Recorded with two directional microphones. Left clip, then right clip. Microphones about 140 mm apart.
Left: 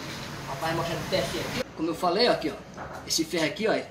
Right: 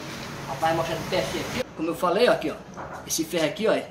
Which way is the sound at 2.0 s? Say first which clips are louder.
Right 3 dB; 25° right (ahead or behind).